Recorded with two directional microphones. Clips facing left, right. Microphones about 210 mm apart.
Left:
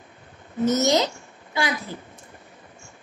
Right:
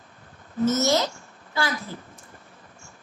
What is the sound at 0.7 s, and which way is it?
A woman's voice, 20° left (ahead or behind).